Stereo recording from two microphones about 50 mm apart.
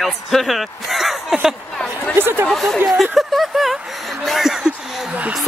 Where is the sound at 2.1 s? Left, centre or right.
Right.